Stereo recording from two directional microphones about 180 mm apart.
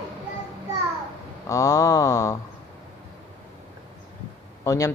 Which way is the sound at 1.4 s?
20° left (ahead or behind).